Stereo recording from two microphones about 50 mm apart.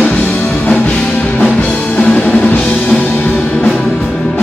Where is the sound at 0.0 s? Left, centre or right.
Left.